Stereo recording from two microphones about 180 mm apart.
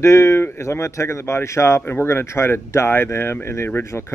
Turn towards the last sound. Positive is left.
turn(degrees=15)  # may be behind; listen again after turning